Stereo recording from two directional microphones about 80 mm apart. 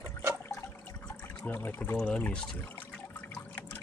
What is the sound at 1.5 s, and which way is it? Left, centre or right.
Speech, left.